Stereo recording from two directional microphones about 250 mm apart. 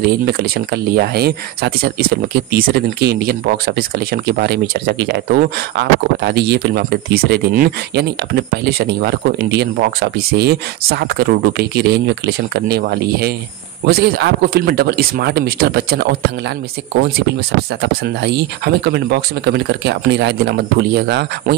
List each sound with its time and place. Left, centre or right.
0.0 s speech: right
18.0 s speech: right